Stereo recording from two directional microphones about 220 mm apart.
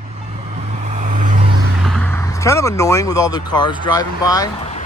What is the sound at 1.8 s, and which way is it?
Speech, 5° left (ahead or behind).